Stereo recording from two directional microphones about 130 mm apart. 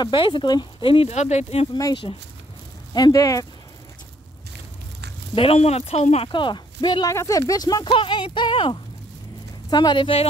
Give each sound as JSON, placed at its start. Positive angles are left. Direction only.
{"t": 0.0, "sound": "speech", "side_deg": 35}
{"t": 1.1, "sound": "speech", "side_deg": 60}
{"t": 2.9, "sound": "speech", "side_deg": 30}
{"t": 5.3, "sound": "speech", "side_deg": 45}
{"t": 6.3, "sound": "speech", "side_deg": 35}
{"t": 7.1, "sound": "speech", "side_deg": 25}
{"t": 7.9, "sound": "speech", "side_deg": 40}